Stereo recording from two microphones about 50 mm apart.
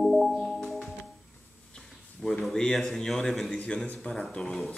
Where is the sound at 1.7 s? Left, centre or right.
Centre.